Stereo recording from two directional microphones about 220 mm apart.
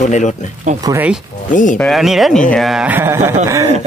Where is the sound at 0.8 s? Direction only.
15° right (ahead or behind).